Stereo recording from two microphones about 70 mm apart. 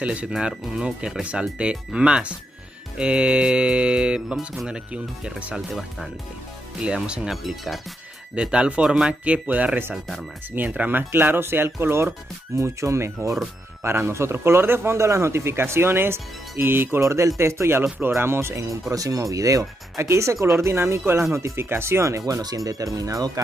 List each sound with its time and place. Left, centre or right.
0.0 s speech: centre
6.8 s speech: centre
7.4 s speech: centre
8.4 s speech: centre; by 17.0 s right
17.0 s speech: right
17.8 s speech: right
18.1 s speech: right
18.7 s speech: right
20.0 s speech: right